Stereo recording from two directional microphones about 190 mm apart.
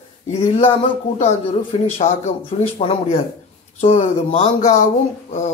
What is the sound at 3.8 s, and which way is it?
Speech, 30° left (ahead or behind).